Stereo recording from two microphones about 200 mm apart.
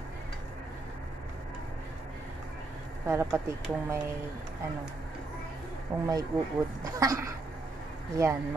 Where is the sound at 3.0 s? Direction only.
15° right (ahead or behind).